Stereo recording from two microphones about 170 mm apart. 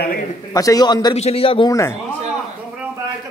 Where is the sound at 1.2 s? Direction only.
35° left (ahead or behind).